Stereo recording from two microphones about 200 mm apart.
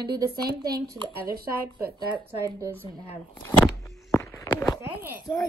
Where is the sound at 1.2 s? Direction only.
50° right (ahead or behind).